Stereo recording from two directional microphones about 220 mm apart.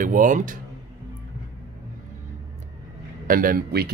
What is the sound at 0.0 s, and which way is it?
Speech, 35° right (ahead or behind).